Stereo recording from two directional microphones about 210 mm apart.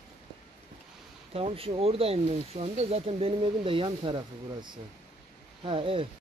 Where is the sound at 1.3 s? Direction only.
25° right (ahead or behind).